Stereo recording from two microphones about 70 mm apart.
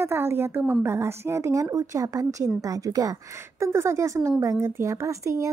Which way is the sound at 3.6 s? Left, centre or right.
Right.